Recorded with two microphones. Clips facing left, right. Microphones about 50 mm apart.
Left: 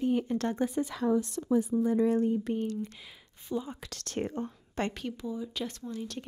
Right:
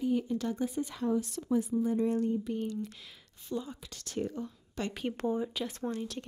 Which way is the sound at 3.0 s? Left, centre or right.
Centre.